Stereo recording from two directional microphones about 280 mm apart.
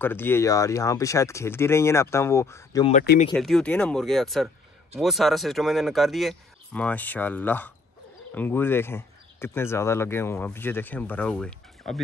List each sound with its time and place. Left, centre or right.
0.0 s speech: centre
2.9 s speech: left
3.3 s speech: centre